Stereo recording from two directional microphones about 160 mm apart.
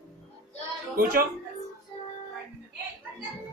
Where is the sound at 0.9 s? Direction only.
65° right (ahead or behind).